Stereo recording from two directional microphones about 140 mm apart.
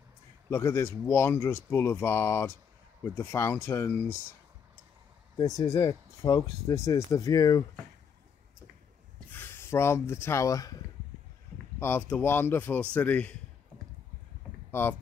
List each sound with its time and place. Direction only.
0.5 s speech: 20° left (ahead or behind)
5.6 s speech: 25° left (ahead or behind)
9.3 s speech: 15° left (ahead or behind)
11.8 s speech: 15° left (ahead or behind)
14.7 s speech: 15° left (ahead or behind)